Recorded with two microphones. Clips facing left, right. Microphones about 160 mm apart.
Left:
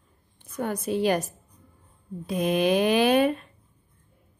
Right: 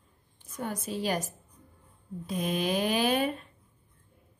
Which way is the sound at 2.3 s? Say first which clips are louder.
Left 7 dB; 70° left (ahead or behind).